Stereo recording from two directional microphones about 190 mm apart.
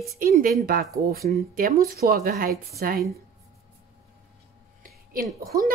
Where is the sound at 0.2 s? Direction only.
45° right (ahead or behind).